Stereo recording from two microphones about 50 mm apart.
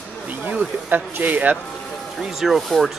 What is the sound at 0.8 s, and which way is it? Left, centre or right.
Speech, right.